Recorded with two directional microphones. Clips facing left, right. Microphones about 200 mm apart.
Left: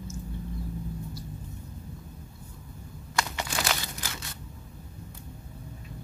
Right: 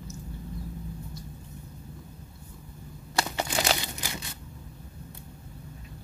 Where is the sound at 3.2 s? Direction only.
30° right (ahead or behind).